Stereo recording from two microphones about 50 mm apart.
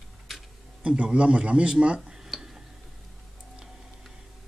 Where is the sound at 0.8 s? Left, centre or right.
Right.